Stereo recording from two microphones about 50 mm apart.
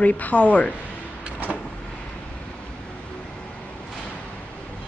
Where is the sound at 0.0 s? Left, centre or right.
Left.